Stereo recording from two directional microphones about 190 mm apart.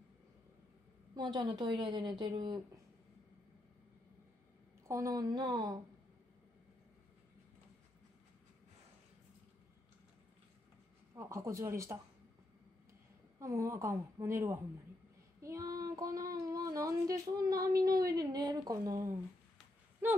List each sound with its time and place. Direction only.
1.1 s a woman's voice: 20° right (ahead or behind)
4.8 s a woman's voice: 15° right (ahead or behind)
11.1 s child singing: 15° right (ahead or behind)
13.4 s child singing: 15° right (ahead or behind)
20.0 s speech: 10° right (ahead or behind)